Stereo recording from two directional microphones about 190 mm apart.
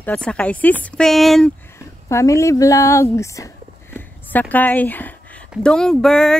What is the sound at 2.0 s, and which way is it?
Speech, 15° left (ahead or behind).